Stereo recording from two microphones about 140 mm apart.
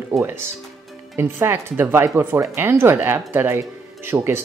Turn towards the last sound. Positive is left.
turn(degrees=-15)  # may be behind; listen again after turning